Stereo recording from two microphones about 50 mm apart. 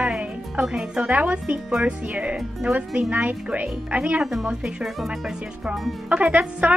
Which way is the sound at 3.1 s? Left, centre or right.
Right.